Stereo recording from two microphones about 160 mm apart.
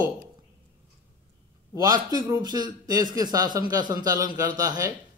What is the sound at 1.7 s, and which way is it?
A man's voice, 25° right (ahead or behind).